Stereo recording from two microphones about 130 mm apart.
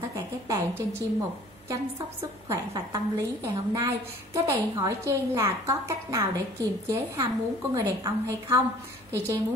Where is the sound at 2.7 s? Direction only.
35° right (ahead or behind).